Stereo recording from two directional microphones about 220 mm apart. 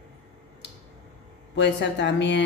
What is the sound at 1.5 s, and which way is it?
Speech, 55° left (ahead or behind).